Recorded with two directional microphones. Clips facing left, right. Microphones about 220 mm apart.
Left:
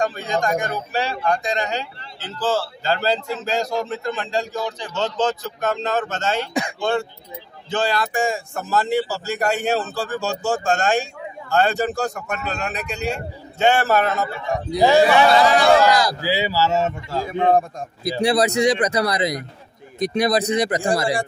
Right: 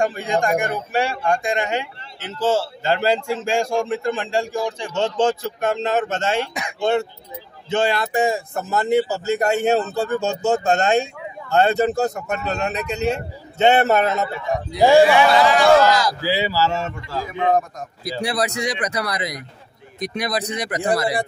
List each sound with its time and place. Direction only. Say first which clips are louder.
0.0 s a man's voice: right 2 dB; 30° right (ahead or behind)
16.2 s a sound: even; 15° left (ahead or behind)
17.1 s a man's voice: left 1 dB; 30° left (ahead or behind)